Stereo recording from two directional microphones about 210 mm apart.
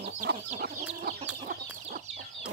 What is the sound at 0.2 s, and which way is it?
Chicken, 45° right (ahead or behind).